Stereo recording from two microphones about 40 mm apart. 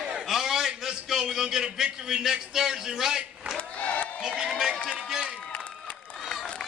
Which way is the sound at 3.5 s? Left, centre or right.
Left.